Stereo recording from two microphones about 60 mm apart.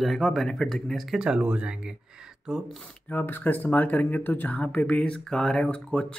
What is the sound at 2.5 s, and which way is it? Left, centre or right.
Speech, centre.